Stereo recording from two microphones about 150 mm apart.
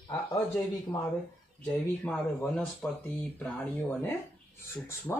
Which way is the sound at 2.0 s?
10° left (ahead or behind).